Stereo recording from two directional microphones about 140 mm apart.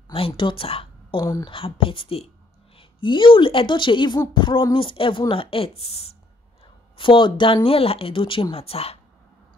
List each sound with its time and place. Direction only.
0.1 s a woman's voice: 40° left (ahead or behind)